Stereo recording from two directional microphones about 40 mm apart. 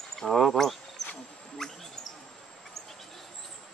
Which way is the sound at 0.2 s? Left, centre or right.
Centre.